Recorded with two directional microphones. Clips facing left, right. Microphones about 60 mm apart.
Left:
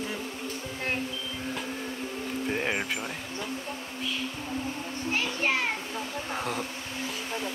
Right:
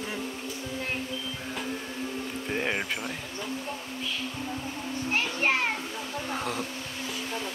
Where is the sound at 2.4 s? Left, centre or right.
Centre.